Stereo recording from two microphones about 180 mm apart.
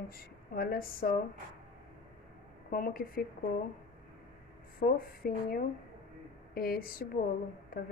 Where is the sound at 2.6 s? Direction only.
50° left (ahead or behind).